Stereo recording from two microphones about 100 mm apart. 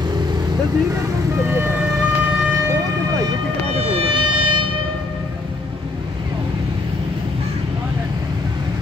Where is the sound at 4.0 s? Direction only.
55° right (ahead or behind).